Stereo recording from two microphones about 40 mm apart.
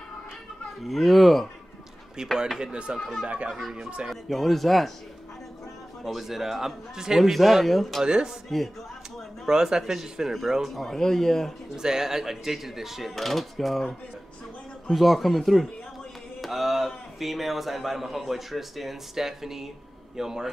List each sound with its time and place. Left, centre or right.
0.8 s a man's voice: centre
2.2 s speech: centre
3.4 s speech: centre
4.1 s a man's voice: centre
6.0 s a man's voice: centre
8.0 s speech: centre
9.5 s a man's voice: centre
10.8 s speech: centre
11.7 s speech: centre
13.1 s a man's voice: centre
14.9 s a man's voice: centre